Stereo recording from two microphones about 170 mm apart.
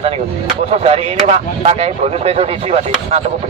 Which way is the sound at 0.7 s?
40° right (ahead or behind).